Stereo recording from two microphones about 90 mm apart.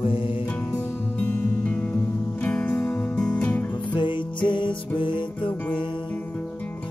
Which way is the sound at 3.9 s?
60° left (ahead or behind).